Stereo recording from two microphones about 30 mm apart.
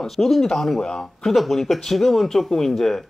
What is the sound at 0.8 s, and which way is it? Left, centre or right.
Speech, left.